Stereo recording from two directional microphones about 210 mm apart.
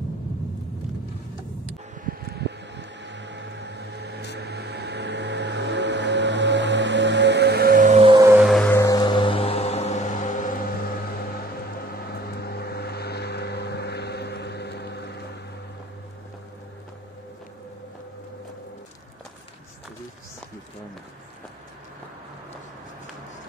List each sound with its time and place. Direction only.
2.0 s vehicle: 50° right (ahead or behind); by 8.1 s 35° right (ahead or behind)
8.1 s music: 15° right (ahead or behind)
8.4 s music: centre (ahead or behind)
8.7 s music: 15° left (ahead or behind); by 11.3 s 45° left (ahead or behind)
11.8 s vehicle: 45° left (ahead or behind)